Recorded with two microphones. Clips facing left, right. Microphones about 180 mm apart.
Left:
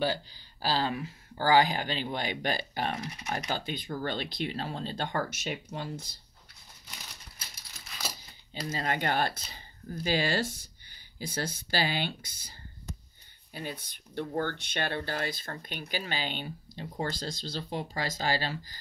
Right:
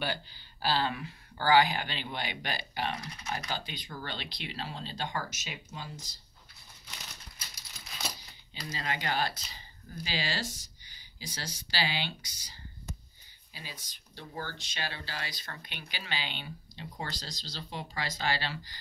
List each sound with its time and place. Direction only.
0.0 s speech: 35° left (ahead or behind); by 6.1 s 60° left (ahead or behind)
8.5 s speech: 50° left (ahead or behind)